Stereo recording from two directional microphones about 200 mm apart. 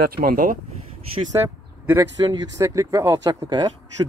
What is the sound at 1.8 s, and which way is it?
Speech, 15° right (ahead or behind).